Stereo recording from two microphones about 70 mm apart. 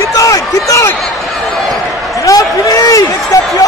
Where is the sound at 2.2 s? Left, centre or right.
Left.